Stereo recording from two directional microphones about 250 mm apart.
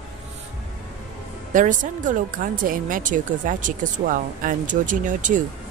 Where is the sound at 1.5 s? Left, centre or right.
Right.